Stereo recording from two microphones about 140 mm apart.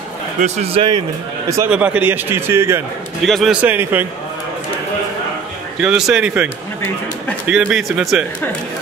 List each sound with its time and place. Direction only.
0.4 s a man's voice: 45° right (ahead or behind)
1.7 s a man's voice: 10° right (ahead or behind)
3.3 s speech: centre (ahead or behind)
3.6 s a man's voice: 15° right (ahead or behind)
5.8 s a man's voice: 5° right (ahead or behind)